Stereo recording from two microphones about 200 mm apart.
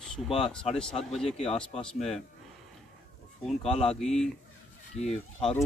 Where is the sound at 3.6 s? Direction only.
30° left (ahead or behind).